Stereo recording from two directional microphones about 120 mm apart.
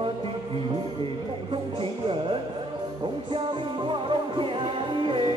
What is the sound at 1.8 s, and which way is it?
Music, 45° right (ahead or behind).